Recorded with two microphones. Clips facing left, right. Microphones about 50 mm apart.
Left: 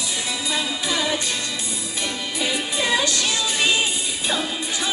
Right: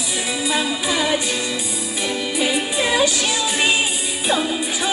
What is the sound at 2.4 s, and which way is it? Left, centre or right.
Music, centre.